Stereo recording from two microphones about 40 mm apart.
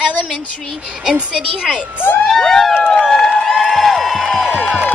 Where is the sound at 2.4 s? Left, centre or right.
Centre.